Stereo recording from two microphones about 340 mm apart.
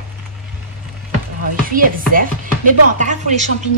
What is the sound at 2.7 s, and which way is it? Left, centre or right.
Speech, right.